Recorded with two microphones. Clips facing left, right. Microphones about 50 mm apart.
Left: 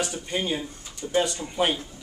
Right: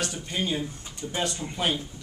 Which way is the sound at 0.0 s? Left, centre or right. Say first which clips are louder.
Left 2 dB; centre.